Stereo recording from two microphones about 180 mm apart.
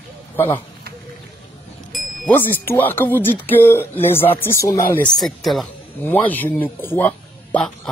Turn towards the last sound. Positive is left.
turn(degrees=10)  # may be behind; listen again after turning